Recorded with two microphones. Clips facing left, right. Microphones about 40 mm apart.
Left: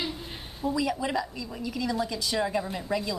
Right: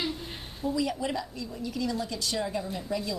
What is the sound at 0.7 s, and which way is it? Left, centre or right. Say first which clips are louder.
A woman's voice: left 1 dB; centre.